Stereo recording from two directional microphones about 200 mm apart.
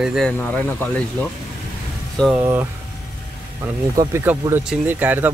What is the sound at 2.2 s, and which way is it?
Speech, 5° right (ahead or behind).